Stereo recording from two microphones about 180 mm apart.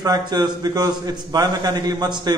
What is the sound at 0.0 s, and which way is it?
A man's voice, 20° right (ahead or behind).